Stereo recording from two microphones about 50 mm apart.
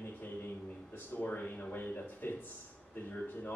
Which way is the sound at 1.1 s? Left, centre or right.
Left.